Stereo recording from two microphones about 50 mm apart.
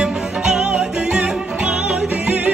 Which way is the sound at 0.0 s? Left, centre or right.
Centre.